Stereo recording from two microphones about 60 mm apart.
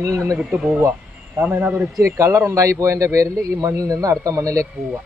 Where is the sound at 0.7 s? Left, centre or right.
Right.